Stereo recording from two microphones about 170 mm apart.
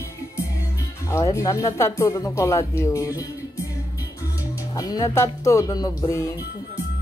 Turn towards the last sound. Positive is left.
turn(degrees=20)  # may be behind; listen again after turning